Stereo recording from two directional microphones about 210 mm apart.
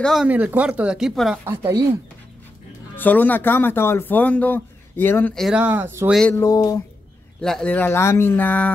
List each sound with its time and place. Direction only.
0.0 s speech: centre (ahead or behind)
1.6 s speech: 20° right (ahead or behind)
3.0 s speech: 10° left (ahead or behind); by 6.1 s 10° right (ahead or behind)
6.4 s speech: 15° left (ahead or behind)
7.4 s speech: 5° left (ahead or behind)